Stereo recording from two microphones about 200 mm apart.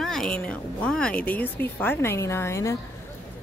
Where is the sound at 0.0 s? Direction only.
Centre (ahead or behind).